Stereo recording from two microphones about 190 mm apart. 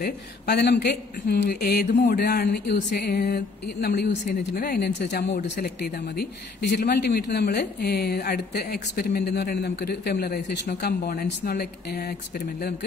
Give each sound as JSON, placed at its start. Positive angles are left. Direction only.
{"t": 0.6, "sound": "speech", "side_deg": 60}